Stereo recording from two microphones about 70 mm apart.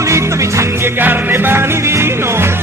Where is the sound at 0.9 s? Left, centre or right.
Right.